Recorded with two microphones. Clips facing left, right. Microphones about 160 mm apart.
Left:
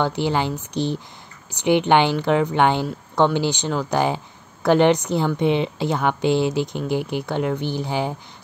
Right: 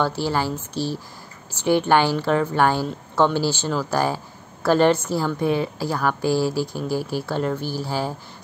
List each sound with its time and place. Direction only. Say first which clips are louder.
0.0 s a woman's voice: left 1 dB; 20° left (ahead or behind)